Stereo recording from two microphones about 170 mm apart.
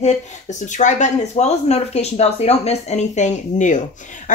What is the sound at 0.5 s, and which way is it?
A woman's voice, 45° left (ahead or behind).